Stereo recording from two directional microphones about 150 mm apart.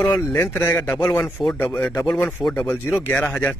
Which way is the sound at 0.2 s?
15° left (ahead or behind).